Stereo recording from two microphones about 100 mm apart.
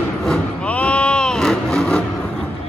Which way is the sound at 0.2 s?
10° left (ahead or behind).